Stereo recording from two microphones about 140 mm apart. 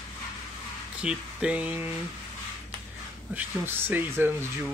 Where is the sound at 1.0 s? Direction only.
10° right (ahead or behind).